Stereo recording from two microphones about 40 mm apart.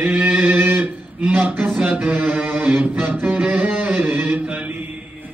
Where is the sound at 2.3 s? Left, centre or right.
Right.